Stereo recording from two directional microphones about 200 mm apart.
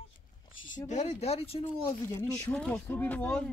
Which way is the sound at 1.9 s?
15° left (ahead or behind).